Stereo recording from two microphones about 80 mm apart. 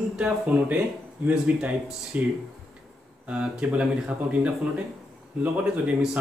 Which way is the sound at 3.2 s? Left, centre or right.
Centre.